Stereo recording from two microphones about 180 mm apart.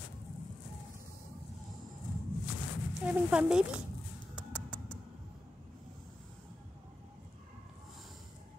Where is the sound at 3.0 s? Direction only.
5° right (ahead or behind).